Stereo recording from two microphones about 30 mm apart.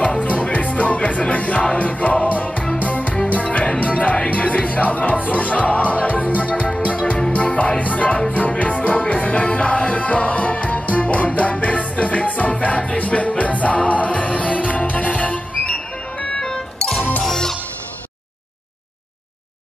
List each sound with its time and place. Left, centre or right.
0.2 s music: left
7.3 s music: left
7.8 s music: left
16.3 s music: left